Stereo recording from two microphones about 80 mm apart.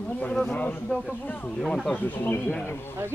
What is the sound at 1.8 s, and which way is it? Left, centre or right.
Speech, centre.